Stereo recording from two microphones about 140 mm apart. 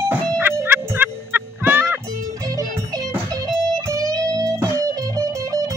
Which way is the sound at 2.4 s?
25° right (ahead or behind).